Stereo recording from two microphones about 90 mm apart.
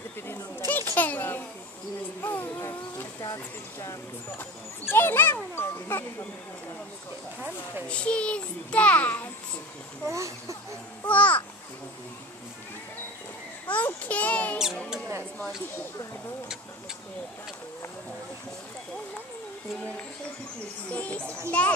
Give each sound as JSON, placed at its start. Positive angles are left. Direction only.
{"t": 0.7, "sound": "a child's voice", "side_deg": 20}
{"t": 4.4, "sound": "speech", "side_deg": 25}
{"t": 7.9, "sound": "a child's voice", "side_deg": 10}
{"t": 10.0, "sound": "speech", "side_deg": -35}
{"t": 11.1, "sound": "babbling", "side_deg": 15}
{"t": 13.7, "sound": "a sound", "side_deg": 15}
{"t": 20.9, "sound": "a child's voice", "side_deg": 15}